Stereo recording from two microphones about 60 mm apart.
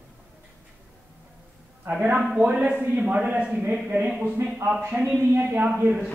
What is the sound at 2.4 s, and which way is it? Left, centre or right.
Speech, right.